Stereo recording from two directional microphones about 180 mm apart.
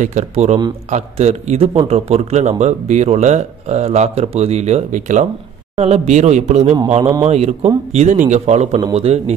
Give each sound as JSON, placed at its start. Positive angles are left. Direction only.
{"t": 0.0, "sound": "a man's voice", "side_deg": -40}
{"t": 7.0, "sound": "a man's voice", "side_deg": -20}
{"t": 7.2, "sound": "a man's voice", "side_deg": -35}